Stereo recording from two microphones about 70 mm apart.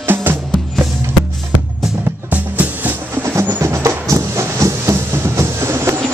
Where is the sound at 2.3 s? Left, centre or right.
Right.